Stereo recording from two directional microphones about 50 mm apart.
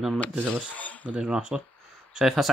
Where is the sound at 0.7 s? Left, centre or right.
Left.